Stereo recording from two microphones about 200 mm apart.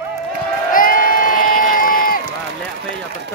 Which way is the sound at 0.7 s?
45° left (ahead or behind).